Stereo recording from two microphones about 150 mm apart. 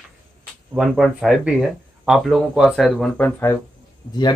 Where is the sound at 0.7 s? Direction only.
Centre (ahead or behind); by 3.6 s 15° left (ahead or behind).